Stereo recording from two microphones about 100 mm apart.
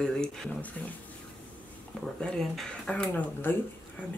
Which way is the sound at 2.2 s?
5° left (ahead or behind).